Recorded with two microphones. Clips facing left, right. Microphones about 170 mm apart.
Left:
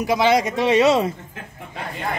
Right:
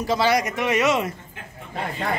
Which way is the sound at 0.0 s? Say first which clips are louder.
Left 3 dB; 15° left (ahead or behind).